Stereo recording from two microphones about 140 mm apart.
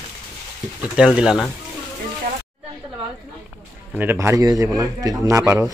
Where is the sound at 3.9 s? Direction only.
15° right (ahead or behind).